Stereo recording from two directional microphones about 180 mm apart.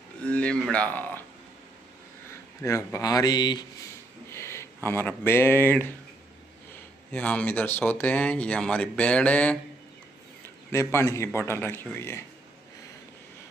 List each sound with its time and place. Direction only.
0.2 s speech: 5° left (ahead or behind)
2.6 s speech: 15° left (ahead or behind)
4.3 s a sound: 15° left (ahead or behind)
4.8 s speech: 10° left (ahead or behind)
7.1 s speech: 5° left (ahead or behind)
10.7 s speech: 15° left (ahead or behind)